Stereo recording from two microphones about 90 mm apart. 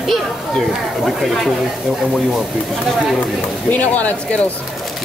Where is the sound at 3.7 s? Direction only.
15° left (ahead or behind).